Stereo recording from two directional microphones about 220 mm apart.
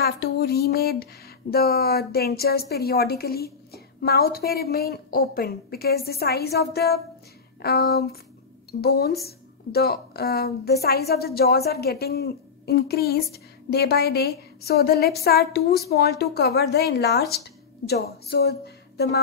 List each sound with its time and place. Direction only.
0.0 s a woman's voice: 45° left (ahead or behind)